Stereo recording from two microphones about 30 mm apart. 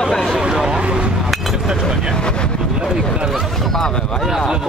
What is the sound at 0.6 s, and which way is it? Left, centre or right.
Speech, right.